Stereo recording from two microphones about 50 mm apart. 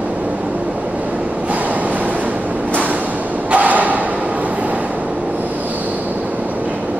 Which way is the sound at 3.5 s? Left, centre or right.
Right.